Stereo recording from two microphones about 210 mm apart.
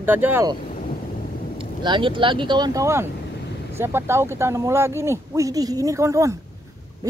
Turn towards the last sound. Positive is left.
turn(degrees=-15)  # may be behind; listen again after turning